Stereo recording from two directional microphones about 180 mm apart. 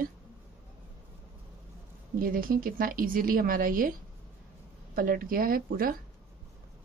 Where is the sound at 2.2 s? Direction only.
55° right (ahead or behind).